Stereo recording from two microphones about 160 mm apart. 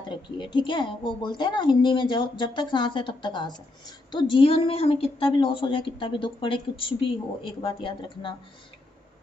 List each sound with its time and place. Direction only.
0.1 s a woman's voice: 30° left (ahead or behind)